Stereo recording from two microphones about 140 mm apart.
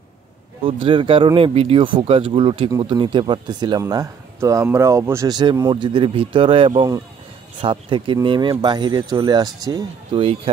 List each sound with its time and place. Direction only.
0.7 s speech: 40° right (ahead or behind)